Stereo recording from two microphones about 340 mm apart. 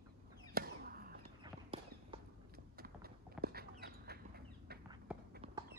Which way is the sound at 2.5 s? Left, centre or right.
Right.